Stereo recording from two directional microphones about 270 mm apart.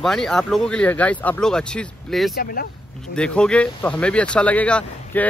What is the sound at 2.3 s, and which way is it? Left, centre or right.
Speech, left.